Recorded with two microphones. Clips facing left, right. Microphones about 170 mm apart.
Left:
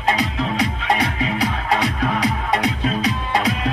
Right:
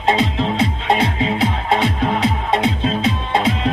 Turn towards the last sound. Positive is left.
turn(degrees=-25)  # may be behind; listen again after turning